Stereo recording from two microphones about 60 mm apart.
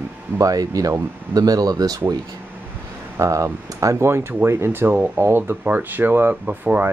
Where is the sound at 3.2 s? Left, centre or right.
Right.